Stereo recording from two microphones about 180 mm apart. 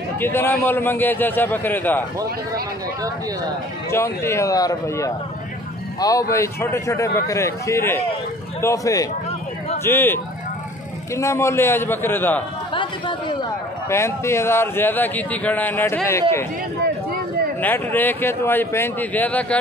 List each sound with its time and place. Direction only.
0.2 s speech: 10° left (ahead or behind)
3.9 s a man's voice: 15° left (ahead or behind)
12.7 s a sound: 25° left (ahead or behind)
13.8 s speech: 15° left (ahead or behind)
16.8 s a sound: 55° right (ahead or behind)
17.6 s speech: 10° left (ahead or behind)